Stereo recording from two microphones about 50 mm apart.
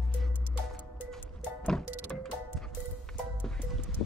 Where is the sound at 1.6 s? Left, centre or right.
Centre.